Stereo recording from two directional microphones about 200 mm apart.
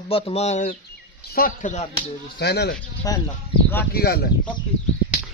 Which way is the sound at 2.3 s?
55° left (ahead or behind).